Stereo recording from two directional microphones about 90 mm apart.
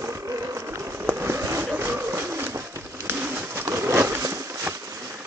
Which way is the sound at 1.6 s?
20° right (ahead or behind).